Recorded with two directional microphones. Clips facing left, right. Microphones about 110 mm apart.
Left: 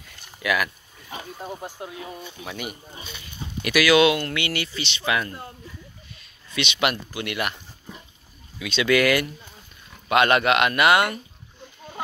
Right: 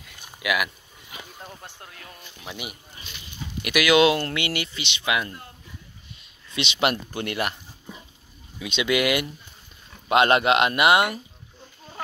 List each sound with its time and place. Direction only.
0.4 s speech: 10° right (ahead or behind)
1.4 s speech: 15° left (ahead or behind)
2.1 s speech: 5° right (ahead or behind)
3.7 s speech: 20° right (ahead or behind)
6.1 s a sound: 25° right (ahead or behind)
7.2 s speech: 35° right (ahead or behind)
8.6 s speech: 20° right (ahead or behind)